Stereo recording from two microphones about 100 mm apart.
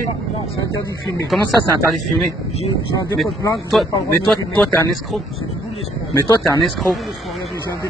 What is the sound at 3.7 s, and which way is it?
Speech, centre (ahead or behind).